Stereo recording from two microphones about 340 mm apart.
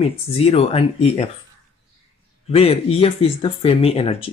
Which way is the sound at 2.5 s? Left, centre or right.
Centre.